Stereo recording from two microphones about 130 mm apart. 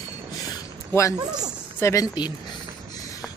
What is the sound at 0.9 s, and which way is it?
Speech, 25° left (ahead or behind).